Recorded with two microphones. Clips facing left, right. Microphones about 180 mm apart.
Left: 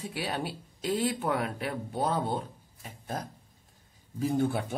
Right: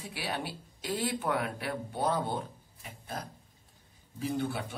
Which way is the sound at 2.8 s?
45° left (ahead or behind).